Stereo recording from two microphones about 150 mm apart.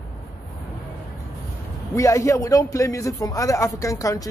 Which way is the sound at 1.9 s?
20° left (ahead or behind).